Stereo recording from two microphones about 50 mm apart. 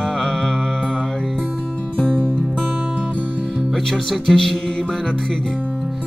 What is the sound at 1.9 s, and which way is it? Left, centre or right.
Music, left.